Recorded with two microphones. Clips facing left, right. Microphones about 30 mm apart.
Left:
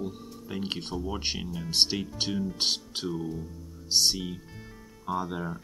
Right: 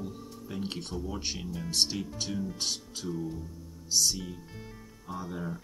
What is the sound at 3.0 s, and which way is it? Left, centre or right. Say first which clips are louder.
Speech: left 2 dB; left.